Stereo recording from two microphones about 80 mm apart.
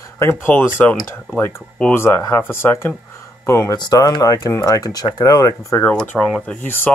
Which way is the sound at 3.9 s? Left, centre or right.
Left.